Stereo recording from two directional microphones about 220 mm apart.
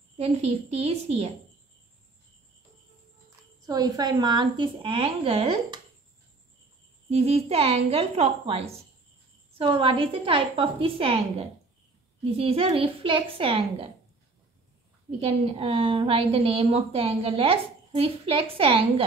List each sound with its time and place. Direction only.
0.2 s a woman's voice: 30° right (ahead or behind)
3.6 s a woman's voice: 15° right (ahead or behind)
7.1 s a woman's voice: 25° right (ahead or behind)
15.0 s a woman's voice: 25° right (ahead or behind)